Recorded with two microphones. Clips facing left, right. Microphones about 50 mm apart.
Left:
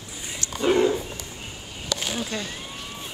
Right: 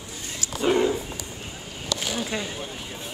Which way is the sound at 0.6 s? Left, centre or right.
Centre.